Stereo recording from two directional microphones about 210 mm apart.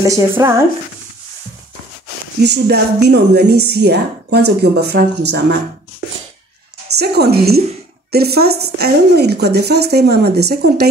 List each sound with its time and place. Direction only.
0.0 s speech: 15° right (ahead or behind)
2.4 s speech: 50° right (ahead or behind)
7.0 s speech: 50° right (ahead or behind)